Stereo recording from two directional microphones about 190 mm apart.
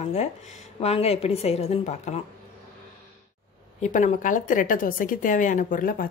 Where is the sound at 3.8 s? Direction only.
40° left (ahead or behind).